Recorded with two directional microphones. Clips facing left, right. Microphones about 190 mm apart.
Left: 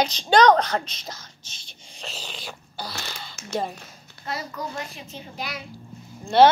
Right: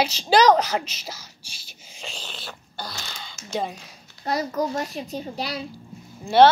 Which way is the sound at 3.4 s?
65° left (ahead or behind).